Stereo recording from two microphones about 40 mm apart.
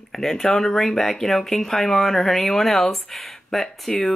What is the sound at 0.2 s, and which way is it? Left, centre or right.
Speech, centre.